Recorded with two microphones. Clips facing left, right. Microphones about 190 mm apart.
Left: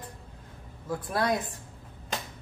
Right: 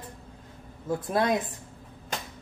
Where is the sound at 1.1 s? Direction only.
20° right (ahead or behind).